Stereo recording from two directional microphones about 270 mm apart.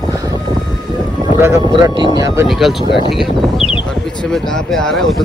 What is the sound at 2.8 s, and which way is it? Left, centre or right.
Speech, centre.